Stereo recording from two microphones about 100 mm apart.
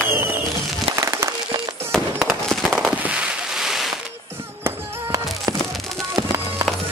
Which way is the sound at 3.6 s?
5° right (ahead or behind).